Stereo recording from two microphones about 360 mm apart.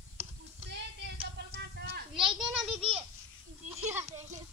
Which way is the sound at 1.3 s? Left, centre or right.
Right.